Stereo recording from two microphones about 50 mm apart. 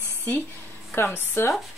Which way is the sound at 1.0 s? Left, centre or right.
Left.